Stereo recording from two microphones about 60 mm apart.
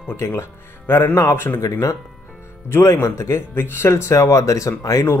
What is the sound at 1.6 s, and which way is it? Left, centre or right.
Speech, left.